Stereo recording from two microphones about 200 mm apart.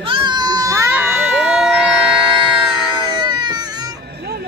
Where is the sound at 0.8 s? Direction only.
5° right (ahead or behind).